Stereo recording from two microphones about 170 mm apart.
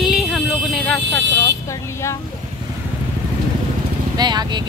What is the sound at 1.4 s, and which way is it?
Vehicle, 15° left (ahead or behind).